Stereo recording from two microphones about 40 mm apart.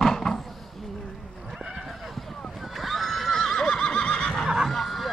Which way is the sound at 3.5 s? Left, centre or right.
Centre.